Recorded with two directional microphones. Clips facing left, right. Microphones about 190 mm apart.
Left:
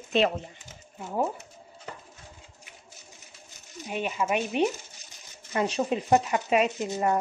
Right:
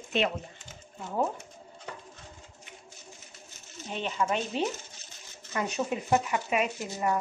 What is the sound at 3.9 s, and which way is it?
Speech, 10° left (ahead or behind).